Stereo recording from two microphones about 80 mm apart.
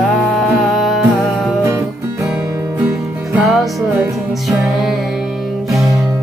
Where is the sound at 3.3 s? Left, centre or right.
Centre.